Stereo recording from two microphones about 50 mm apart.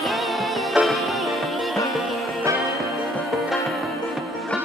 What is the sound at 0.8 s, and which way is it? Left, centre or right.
Music, centre.